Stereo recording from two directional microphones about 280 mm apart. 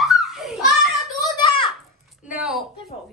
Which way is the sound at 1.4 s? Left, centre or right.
Centre.